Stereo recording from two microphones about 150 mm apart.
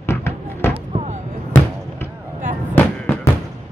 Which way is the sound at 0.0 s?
15° left (ahead or behind).